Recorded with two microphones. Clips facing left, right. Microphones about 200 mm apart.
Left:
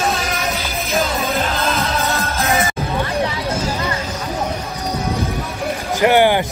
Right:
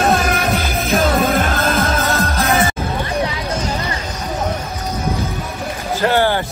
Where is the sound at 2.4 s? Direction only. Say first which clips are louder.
Right 2 dB; 30° right (ahead or behind).